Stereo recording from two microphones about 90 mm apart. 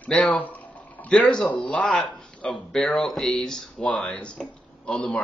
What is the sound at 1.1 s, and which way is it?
Speech, 5° left (ahead or behind).